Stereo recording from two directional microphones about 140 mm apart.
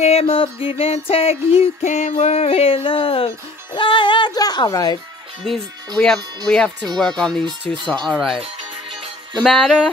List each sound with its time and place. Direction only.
0.0 s music: 45° left (ahead or behind); by 4.9 s 25° left (ahead or behind)
5.9 s speech: 5° left (ahead or behind)
9.4 s speech: centre (ahead or behind)